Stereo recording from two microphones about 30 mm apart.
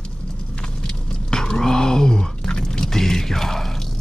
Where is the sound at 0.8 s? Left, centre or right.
Left.